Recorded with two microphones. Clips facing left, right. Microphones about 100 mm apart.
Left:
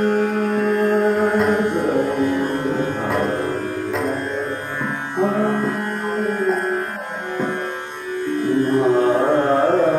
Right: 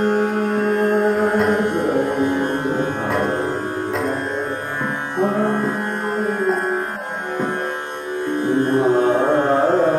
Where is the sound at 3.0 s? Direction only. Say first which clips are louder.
Even; centre (ahead or behind).